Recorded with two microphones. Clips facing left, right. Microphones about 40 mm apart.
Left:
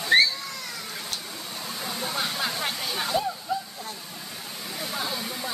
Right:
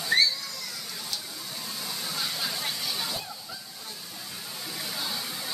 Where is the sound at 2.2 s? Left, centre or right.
Left.